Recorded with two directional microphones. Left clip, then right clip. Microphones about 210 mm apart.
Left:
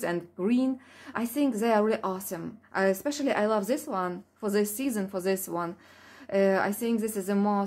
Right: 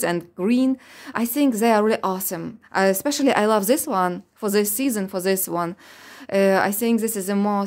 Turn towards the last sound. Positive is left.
turn(degrees=-35)  # may be behind; listen again after turning